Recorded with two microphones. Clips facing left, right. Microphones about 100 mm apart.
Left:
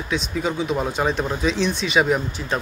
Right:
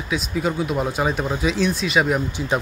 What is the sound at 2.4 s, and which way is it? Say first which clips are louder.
Speech: right 3 dB; 15° right (ahead or behind).